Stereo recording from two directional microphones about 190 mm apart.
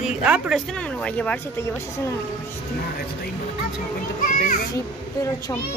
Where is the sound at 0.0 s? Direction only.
5° right (ahead or behind); by 2.1 s 10° left (ahead or behind).